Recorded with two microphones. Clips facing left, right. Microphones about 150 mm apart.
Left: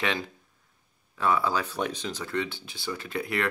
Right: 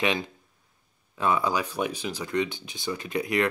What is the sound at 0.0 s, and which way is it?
Speech, 20° right (ahead or behind).